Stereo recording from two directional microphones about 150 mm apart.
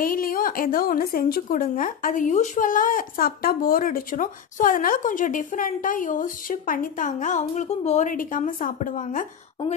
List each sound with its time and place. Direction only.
0.0 s a woman's voice: 70° left (ahead or behind)